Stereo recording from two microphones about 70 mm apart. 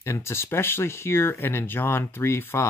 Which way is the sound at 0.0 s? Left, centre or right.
Left.